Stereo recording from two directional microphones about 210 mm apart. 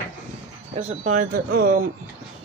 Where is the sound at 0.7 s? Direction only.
30° right (ahead or behind).